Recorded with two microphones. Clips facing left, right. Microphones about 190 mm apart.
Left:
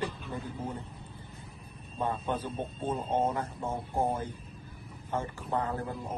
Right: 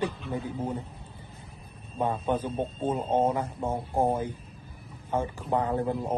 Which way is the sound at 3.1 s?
55° right (ahead or behind).